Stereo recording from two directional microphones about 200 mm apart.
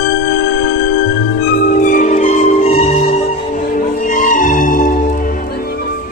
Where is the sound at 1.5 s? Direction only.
45° left (ahead or behind).